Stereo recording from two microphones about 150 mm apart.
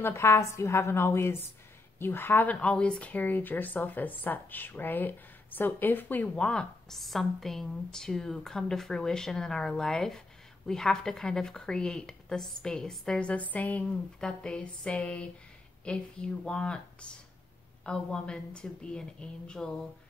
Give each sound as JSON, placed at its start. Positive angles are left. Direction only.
{"t": 0.0, "sound": "a woman's voice", "side_deg": 15}
{"t": 17.8, "sound": "a woman's voice", "side_deg": 5}